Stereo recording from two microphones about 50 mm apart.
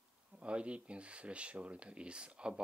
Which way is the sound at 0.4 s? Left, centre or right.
Right.